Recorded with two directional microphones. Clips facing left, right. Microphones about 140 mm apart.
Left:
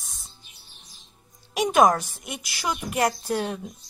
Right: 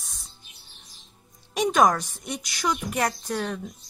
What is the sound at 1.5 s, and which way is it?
A woman's voice, 5° left (ahead or behind).